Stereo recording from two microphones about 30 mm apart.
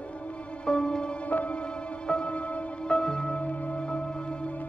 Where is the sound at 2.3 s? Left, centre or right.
Left.